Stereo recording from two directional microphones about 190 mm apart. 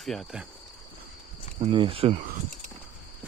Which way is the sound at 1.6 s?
30° right (ahead or behind).